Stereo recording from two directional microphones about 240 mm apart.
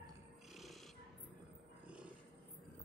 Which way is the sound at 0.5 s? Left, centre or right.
Centre.